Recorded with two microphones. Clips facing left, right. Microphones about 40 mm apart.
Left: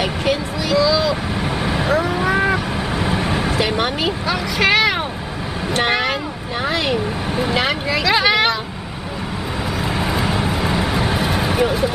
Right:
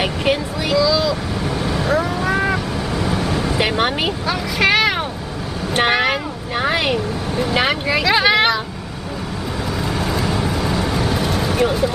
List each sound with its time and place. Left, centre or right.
0.0 s child singing: centre
0.7 s vehicle: centre
1.6 s vehicle: left
1.9 s vehicle: centre
3.0 s vehicle: left
3.5 s vehicle: centre
4.3 s vehicle: centre
5.8 s vehicle: centre
6.6 s a sound: centre
7.5 s vehicle: centre
9.9 s vehicle: centre
11.6 s a sound: centre